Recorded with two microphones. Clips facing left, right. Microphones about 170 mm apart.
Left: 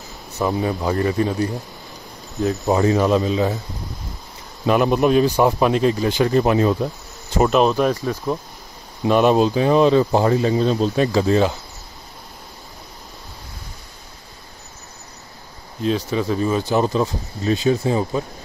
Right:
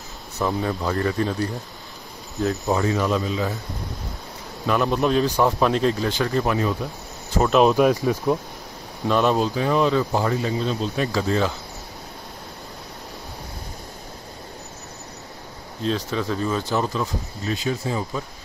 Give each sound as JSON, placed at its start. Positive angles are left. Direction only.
{"t": 0.6, "sound": "speech", "side_deg": 15}
{"t": 2.3, "sound": "cricket", "side_deg": 0}
{"t": 2.8, "sound": "speech", "side_deg": 35}
{"t": 4.6, "sound": "speech", "side_deg": 15}
{"t": 7.4, "sound": "speech", "side_deg": 0}
{"t": 9.0, "sound": "speech", "side_deg": 15}
{"t": 11.1, "sound": "speech", "side_deg": 20}
{"t": 15.8, "sound": "speech", "side_deg": 10}